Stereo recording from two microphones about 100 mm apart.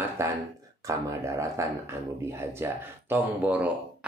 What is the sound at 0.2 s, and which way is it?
Speech, 25° right (ahead or behind).